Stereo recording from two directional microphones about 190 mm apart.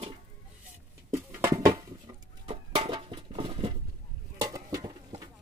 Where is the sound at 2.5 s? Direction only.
25° right (ahead or behind).